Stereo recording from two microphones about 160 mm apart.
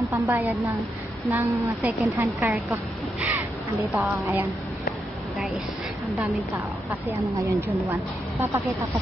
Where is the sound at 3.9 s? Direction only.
15° right (ahead or behind).